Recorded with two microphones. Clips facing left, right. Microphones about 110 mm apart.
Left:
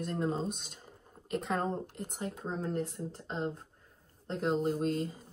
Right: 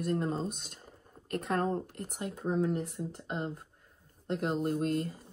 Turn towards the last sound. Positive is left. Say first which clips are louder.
# even
turn(degrees=0)  # may be behind; listen again after turning